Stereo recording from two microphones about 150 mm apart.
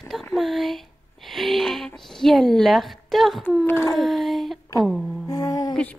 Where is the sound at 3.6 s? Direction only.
15° left (ahead or behind).